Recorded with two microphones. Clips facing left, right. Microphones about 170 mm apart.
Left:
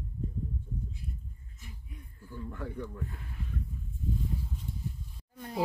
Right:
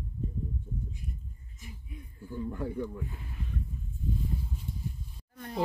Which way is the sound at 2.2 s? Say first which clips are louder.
Right 6 dB; 20° right (ahead or behind).